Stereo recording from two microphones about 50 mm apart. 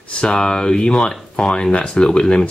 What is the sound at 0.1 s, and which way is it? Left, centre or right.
Speech, centre.